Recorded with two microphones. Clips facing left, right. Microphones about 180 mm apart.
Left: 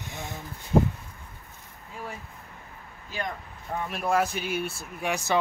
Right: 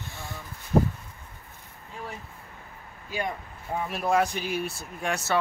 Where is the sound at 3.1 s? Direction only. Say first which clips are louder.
Right 3 dB; 10° right (ahead or behind).